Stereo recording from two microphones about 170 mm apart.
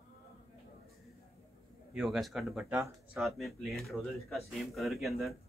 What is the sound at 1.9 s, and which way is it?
Speech, 5° right (ahead or behind).